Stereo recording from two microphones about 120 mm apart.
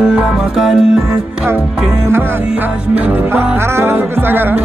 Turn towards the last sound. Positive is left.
turn(degrees=-15)  # may be behind; listen again after turning